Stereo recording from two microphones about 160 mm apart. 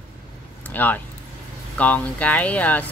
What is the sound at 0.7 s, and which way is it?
Speech, 10° left (ahead or behind).